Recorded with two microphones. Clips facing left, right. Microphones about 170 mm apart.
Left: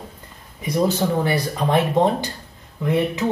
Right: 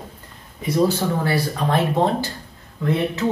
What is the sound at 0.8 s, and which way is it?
Speech, 20° left (ahead or behind).